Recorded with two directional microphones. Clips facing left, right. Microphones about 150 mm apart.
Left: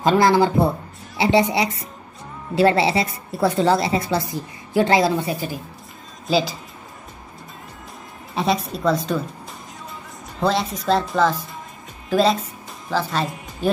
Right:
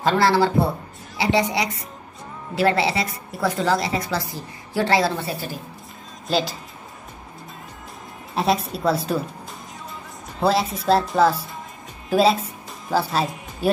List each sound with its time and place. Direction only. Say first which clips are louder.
0.0 s a woman's voice: left 2 dB; 15° left (ahead or behind)
6.2 s speech: left 3 dB; centre (ahead or behind)
8.4 s speech: even; centre (ahead or behind)
10.4 s speech: right 1 dB; 5° right (ahead or behind)